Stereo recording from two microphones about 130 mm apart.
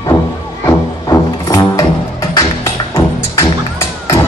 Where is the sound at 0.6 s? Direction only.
25° left (ahead or behind).